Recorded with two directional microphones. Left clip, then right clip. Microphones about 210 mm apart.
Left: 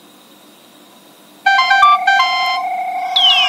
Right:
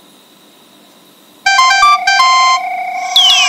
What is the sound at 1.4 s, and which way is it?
Music, 30° right (ahead or behind).